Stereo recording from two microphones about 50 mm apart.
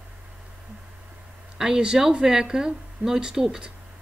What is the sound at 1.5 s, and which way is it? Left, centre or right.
Speech, centre.